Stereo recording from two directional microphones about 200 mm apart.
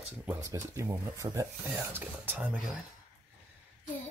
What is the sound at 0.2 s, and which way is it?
Speech, 10° right (ahead or behind).